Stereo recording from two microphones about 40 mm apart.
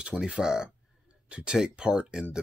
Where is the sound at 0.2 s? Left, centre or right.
Centre.